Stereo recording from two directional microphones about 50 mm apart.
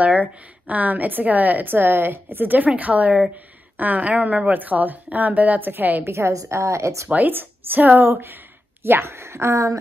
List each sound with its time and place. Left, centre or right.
0.0 s a woman's voice: right
6.0 s a woman's voice: right
7.1 s a woman's voice: right
7.3 s a woman's voice: right
8.1 s a woman's voice: right